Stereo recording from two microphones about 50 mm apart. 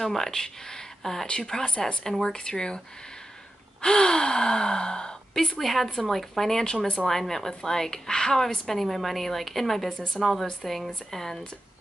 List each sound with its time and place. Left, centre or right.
0.0 s a woman's voice: centre
3.8 s a woman's voice: centre
9.8 s a woman's voice: centre
10.2 s a woman's voice: centre